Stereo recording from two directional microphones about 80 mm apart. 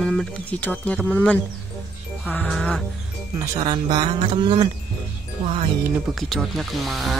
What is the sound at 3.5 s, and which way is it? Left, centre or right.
Speech, right.